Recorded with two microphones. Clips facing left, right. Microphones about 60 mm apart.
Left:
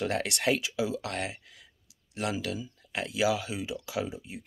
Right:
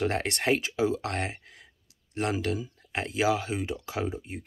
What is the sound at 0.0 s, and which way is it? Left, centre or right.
Speech, right.